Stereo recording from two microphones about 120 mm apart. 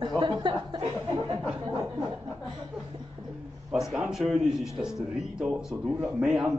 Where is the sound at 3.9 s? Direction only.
5° right (ahead or behind).